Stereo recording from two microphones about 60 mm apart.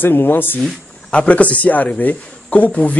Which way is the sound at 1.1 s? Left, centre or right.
Left.